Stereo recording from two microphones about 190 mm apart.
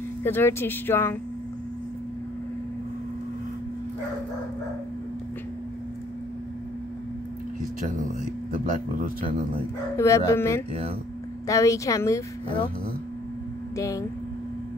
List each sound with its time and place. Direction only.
0.2 s speech: 10° left (ahead or behind)
8.5 s speech: 45° right (ahead or behind)
9.9 s speech: 15° left (ahead or behind)
13.7 s speech: 15° left (ahead or behind)